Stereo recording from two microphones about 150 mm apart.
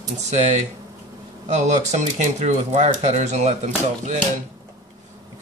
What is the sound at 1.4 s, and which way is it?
Speech, 50° right (ahead or behind).